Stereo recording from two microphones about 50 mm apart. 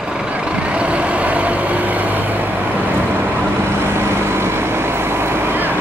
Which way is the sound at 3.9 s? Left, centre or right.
Right.